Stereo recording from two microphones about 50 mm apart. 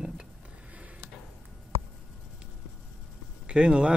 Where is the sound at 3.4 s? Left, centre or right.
Centre.